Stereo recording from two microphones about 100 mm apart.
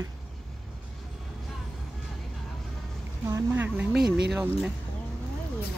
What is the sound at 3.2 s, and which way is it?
Speech, 20° right (ahead or behind).